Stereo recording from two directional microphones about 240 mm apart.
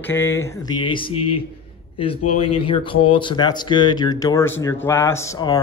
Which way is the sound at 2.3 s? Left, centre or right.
Left.